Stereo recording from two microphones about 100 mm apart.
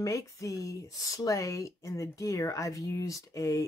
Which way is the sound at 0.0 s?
35° left (ahead or behind).